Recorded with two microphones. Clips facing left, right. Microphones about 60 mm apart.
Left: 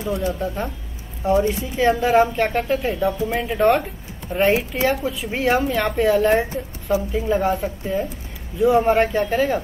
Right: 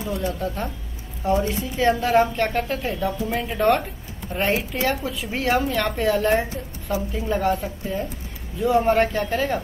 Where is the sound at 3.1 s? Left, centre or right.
Centre.